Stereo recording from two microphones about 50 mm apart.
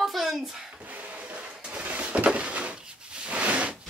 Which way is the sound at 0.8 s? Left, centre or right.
Right.